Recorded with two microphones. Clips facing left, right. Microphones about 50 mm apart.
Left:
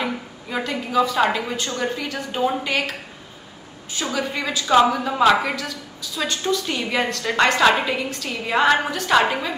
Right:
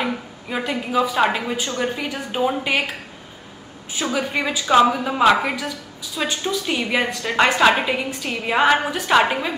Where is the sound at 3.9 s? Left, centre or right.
Centre.